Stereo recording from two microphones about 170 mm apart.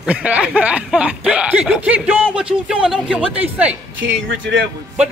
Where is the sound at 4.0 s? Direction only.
90° right.